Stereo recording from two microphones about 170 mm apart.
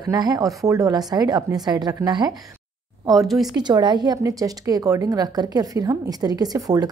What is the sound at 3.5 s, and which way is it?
Speech, 25° right (ahead or behind).